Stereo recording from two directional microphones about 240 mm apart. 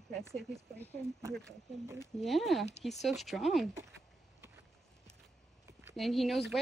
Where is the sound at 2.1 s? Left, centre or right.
Centre.